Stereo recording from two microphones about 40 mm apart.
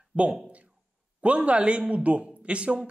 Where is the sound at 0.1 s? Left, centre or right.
Right.